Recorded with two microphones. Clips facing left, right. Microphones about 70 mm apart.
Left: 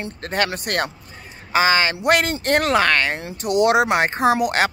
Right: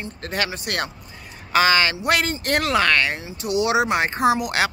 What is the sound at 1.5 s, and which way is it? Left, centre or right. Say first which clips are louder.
Speech: even; left.